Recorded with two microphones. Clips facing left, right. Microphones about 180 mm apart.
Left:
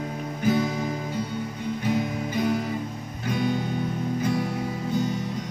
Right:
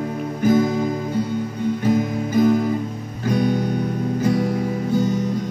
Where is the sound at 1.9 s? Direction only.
45° right (ahead or behind).